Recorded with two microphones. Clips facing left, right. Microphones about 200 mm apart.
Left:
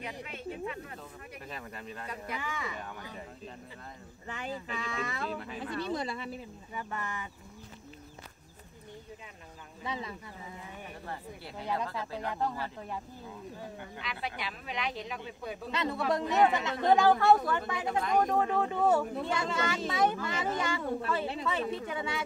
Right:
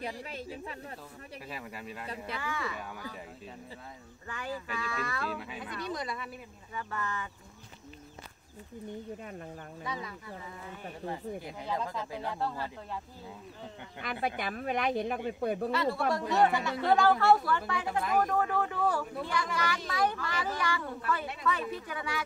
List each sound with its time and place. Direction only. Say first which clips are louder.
0.2 s speech: left 2 dB; 35° right (ahead or behind)
1.5 s speech: right 1 dB; 5° right (ahead or behind)
2.3 s speech: right 2 dB; 15° left (ahead or behind)
4.3 s speech: even; 20° left (ahead or behind)
5.3 s speech: left 1 dB; 5° right (ahead or behind)
5.7 s speech: left 3 dB; 30° left (ahead or behind)
9.8 s speech: left 2 dB; 25° left (ahead or behind)
12.4 s speech: left 2 dB; 15° left (ahead or behind)
14.2 s speech: right 8 dB; 50° right (ahead or behind)
15.7 s speech: right 1 dB; 20° left (ahead or behind)